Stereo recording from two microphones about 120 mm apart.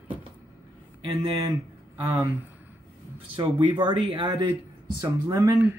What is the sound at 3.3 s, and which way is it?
Speech, 45° right (ahead or behind).